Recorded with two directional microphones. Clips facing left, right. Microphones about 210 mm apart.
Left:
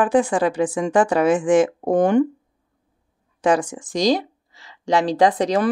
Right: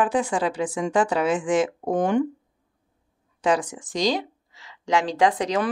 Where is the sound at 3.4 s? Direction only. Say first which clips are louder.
Left 4 dB; 50° left (ahead or behind).